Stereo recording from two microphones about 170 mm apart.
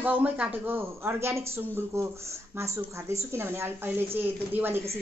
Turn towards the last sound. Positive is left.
turn(degrees=-10)  # may be behind; listen again after turning